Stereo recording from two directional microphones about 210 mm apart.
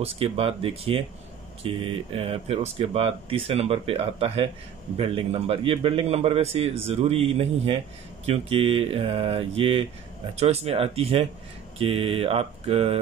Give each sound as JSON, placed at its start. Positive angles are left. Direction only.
{"t": 0.0, "sound": "a man's voice", "side_deg": -30}